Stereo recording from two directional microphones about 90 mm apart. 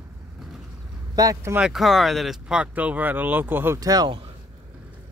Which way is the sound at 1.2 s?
40° right (ahead or behind).